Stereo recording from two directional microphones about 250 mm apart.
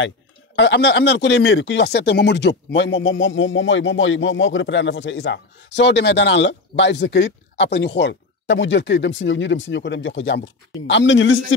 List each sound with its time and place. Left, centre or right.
0.6 s speech: left